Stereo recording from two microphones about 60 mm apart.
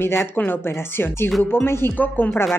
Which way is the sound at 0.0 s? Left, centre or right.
Left.